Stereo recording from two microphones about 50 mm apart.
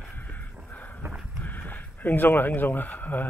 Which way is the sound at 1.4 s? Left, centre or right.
Left.